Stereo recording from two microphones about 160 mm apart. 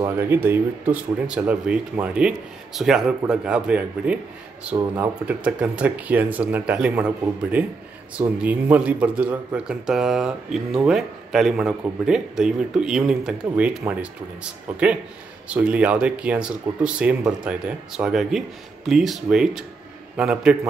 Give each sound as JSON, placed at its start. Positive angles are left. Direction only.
{"t": 0.0, "sound": "speech", "side_deg": -15}
{"t": 8.2, "sound": "speech", "side_deg": -10}